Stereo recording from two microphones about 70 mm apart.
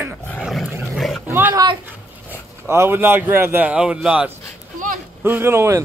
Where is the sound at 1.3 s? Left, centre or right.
Right.